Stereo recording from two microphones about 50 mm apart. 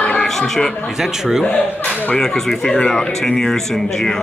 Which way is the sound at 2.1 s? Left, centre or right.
Centre.